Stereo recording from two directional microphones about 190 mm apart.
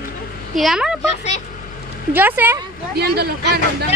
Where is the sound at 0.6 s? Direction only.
Centre (ahead or behind).